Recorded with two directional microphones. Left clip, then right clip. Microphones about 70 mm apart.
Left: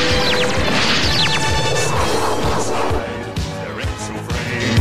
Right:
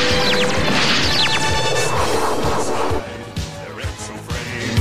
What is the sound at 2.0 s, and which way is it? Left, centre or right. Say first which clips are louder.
Music: even; left.